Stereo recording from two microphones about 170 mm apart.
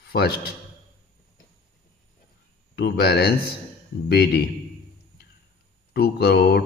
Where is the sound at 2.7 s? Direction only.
70° left (ahead or behind).